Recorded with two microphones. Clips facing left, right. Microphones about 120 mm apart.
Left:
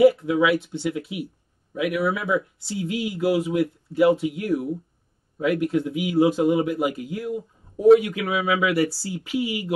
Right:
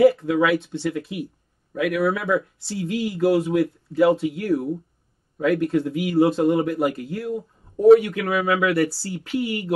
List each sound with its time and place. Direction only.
0.0 s a man's voice: 5° left (ahead or behind)